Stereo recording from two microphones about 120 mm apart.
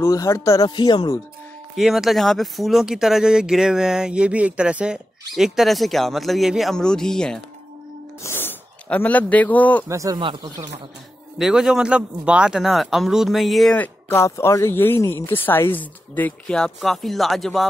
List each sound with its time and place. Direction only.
0.0 s speech: 25° left (ahead or behind)
0.7 s speech: 40° left (ahead or behind)
1.8 s speech: 5° right (ahead or behind)
8.2 s speech: 20° left (ahead or behind)
9.8 s speech: 25° right (ahead or behind)
10.1 s speech: 35° right (ahead or behind)
11.3 s speech: 5° right (ahead or behind)
13.7 s speech: 20° left (ahead or behind); by 17.6 s centre (ahead or behind)